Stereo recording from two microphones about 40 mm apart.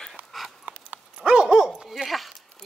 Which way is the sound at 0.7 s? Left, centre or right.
Right.